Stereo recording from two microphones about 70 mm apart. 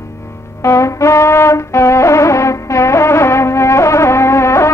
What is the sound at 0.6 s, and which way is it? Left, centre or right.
Music, left.